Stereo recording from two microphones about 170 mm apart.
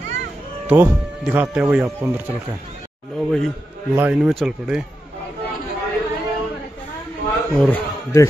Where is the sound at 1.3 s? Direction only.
5° right (ahead or behind).